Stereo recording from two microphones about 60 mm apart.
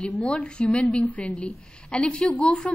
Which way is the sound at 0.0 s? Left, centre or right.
Centre.